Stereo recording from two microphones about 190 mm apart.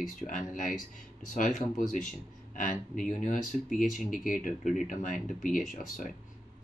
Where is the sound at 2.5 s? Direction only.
45° left (ahead or behind).